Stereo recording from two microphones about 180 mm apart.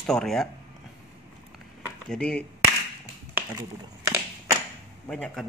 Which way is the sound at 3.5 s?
20° right (ahead or behind).